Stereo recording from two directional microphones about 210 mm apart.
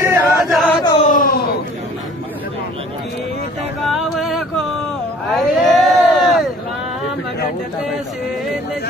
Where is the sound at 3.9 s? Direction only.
Centre (ahead or behind).